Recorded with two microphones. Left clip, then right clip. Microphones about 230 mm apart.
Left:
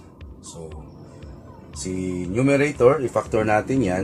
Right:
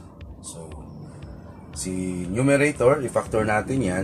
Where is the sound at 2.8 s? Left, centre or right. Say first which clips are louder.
Left 2 dB; left.